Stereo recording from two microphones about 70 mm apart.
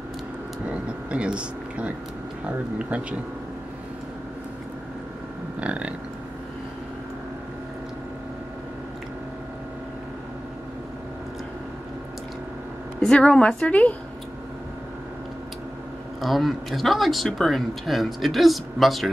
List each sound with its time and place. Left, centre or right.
0.7 s speech: centre
5.6 s speech: centre
13.0 s a woman's voice: centre
16.2 s speech: centre